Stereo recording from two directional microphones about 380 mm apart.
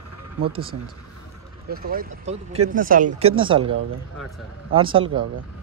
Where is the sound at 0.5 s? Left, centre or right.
Centre.